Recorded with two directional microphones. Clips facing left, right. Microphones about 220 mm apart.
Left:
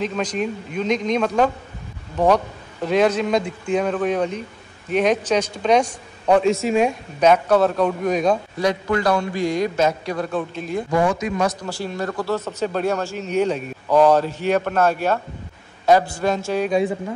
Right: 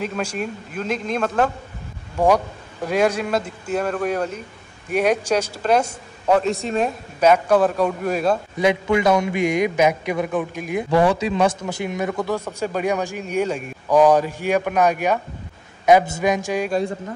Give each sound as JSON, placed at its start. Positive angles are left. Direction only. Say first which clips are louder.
{"t": 0.0, "sound": "a man's voice", "louder": "left 2 dB", "side_deg": -10}
{"t": 8.5, "sound": "speech", "louder": "right 2 dB", "side_deg": -15}
{"t": 16.6, "sound": "a man's voice", "louder": "left 5 dB", "side_deg": 0}